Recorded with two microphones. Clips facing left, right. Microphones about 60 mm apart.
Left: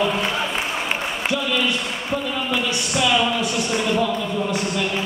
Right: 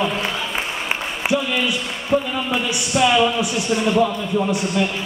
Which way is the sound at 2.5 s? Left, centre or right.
Right.